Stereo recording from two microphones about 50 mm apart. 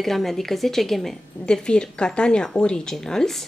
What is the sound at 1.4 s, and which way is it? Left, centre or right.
A woman's voice, centre.